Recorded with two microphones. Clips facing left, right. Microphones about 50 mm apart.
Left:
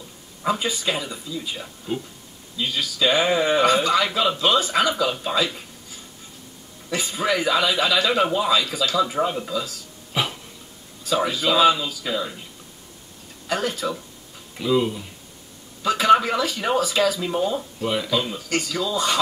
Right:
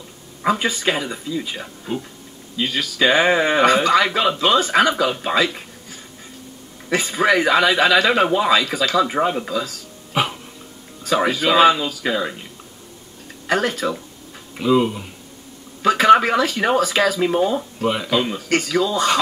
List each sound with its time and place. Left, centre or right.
0.4 s a man's voice: right
6.9 s a man's voice: right
11.1 s a man's voice: right
13.5 s a man's voice: right
14.6 s speech: right
15.8 s a man's voice: right
17.5 s speech: right
18.1 s speech: right
18.5 s a man's voice: right